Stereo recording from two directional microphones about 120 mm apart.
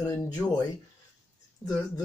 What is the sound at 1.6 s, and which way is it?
Speech, 15° left (ahead or behind).